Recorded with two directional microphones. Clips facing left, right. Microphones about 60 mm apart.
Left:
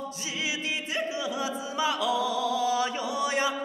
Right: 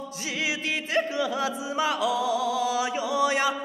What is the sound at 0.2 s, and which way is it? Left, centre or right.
Music, right.